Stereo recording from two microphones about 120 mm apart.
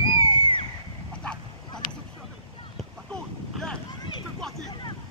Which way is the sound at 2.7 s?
5° left (ahead or behind).